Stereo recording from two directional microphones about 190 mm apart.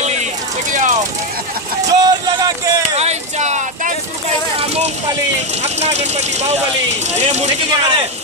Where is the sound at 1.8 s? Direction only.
20° right (ahead or behind).